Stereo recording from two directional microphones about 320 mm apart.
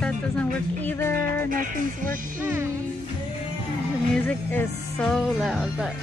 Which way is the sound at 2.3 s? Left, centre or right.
Centre.